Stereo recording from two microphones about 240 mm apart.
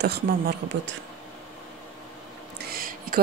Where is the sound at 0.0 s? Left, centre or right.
Right.